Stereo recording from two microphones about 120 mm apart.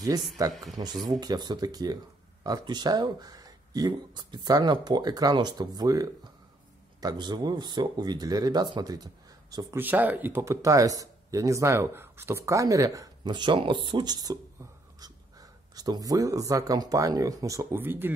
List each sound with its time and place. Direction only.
0.5 s speech: centre (ahead or behind)
1.2 s speech: 35° right (ahead or behind)
9.8 s speech: 15° right (ahead or behind)
17.7 s speech: 15° right (ahead or behind)